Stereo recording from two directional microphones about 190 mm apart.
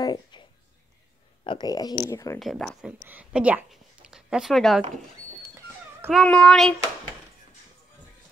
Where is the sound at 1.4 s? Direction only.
25° left (ahead or behind).